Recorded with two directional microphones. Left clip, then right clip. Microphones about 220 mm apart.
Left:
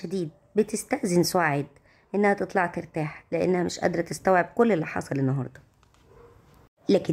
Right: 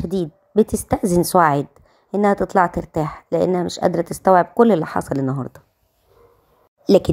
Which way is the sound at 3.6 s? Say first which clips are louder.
Right 7 dB; 10° right (ahead or behind).